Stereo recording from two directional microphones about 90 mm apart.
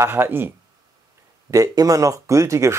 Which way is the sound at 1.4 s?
40° right (ahead or behind).